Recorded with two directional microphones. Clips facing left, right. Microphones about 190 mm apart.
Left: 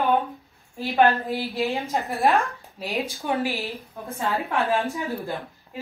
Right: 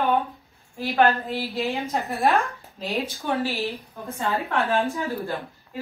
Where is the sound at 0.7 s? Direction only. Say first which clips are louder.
Left 1 dB; 15° left (ahead or behind).